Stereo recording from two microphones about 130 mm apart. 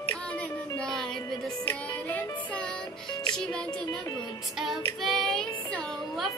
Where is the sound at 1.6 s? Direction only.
15° left (ahead or behind).